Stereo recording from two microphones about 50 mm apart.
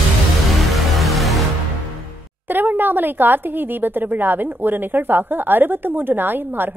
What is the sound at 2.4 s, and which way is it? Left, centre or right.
Speech, right.